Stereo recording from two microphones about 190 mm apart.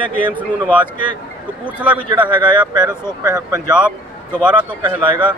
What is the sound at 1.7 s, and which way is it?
Speech, 10° right (ahead or behind).